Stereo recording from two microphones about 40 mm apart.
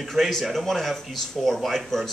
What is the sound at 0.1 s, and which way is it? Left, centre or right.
A man's voice, centre.